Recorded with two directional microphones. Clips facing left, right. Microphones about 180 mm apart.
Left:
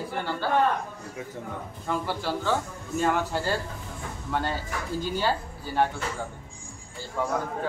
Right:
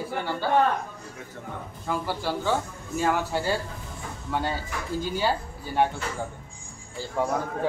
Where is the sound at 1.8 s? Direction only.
10° right (ahead or behind).